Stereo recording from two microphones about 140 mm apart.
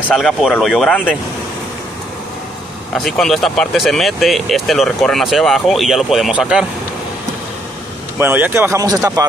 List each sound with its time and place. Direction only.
0.1 s speech: centre (ahead or behind)
3.0 s speech: centre (ahead or behind)
8.2 s speech: 15° right (ahead or behind)